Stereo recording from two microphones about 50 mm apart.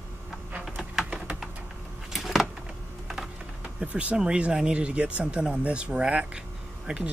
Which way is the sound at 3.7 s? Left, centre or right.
Right.